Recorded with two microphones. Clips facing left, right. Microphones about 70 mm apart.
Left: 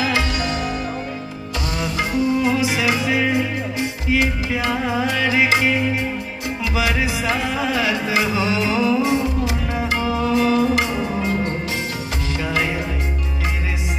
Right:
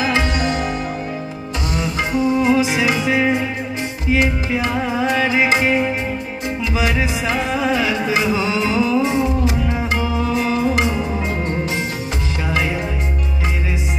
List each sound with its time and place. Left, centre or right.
0.0 s music: right
1.8 s music: right
7.0 s music: right